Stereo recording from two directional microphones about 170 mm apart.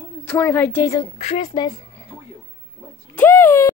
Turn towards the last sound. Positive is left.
turn(degrees=10)  # may be behind; listen again after turning